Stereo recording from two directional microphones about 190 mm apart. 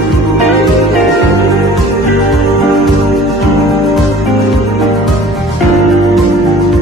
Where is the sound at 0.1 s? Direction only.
Centre (ahead or behind).